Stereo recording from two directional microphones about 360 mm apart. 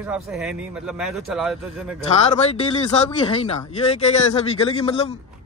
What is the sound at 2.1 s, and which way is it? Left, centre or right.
Speech, centre.